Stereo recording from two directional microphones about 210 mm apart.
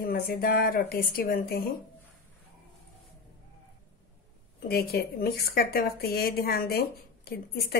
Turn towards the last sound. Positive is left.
turn(degrees=45)  # may be behind; listen again after turning